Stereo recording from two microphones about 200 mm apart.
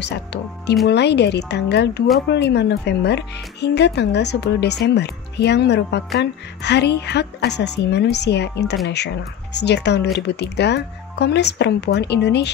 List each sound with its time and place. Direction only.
0.0 s speech: 60° left (ahead or behind)